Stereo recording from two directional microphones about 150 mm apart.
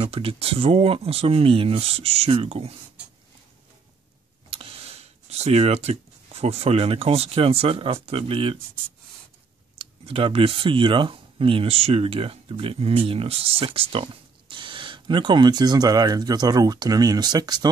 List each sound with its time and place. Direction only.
0.0 s speech: 40° right (ahead or behind)
4.5 s speech: 40° right (ahead or behind)
9.8 s speech: 40° right (ahead or behind)